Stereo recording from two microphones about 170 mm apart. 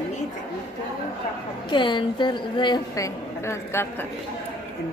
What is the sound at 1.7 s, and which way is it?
A woman's voice, 30° left (ahead or behind).